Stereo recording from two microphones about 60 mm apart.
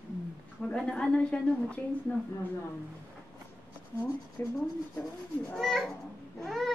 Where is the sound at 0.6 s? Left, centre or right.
Centre.